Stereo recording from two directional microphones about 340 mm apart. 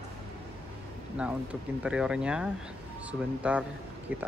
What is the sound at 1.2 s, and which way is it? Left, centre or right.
A man's voice, centre.